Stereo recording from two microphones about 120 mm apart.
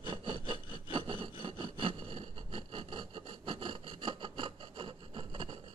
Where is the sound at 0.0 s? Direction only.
45° right (ahead or behind).